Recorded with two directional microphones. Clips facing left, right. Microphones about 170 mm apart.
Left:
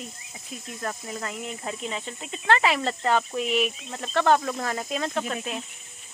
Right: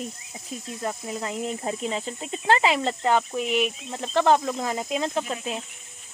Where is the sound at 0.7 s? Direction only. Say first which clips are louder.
Right 2 dB; 15° right (ahead or behind).